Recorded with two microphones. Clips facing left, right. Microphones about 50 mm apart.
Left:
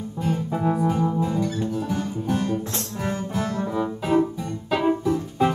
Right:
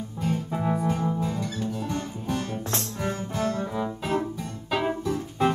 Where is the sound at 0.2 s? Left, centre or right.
Centre.